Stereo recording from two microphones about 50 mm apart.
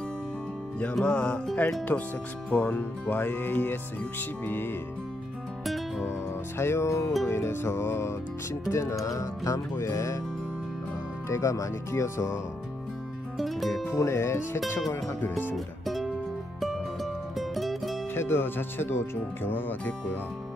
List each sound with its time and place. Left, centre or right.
1.0 s music: centre
1.9 s music: left
3.1 s music: left
6.6 s speech: left
7.2 s music: left
8.6 s speech: left
11.2 s speech: left
13.4 s speech: centre
13.8 s speech: left
15.2 s speech: left
15.5 s music: centre
18.1 s speech: left